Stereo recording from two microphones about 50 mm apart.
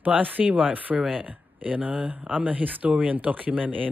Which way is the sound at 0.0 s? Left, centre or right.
Right.